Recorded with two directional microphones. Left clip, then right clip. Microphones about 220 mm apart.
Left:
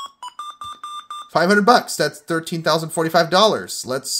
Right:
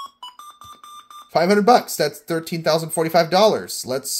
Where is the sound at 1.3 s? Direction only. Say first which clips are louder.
Left 1 dB; 10° left (ahead or behind).